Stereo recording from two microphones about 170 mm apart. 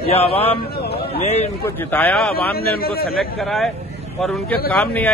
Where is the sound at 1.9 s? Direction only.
10° left (ahead or behind).